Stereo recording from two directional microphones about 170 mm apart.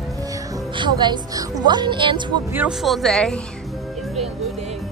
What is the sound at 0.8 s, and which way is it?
A woman's voice, 25° right (ahead or behind).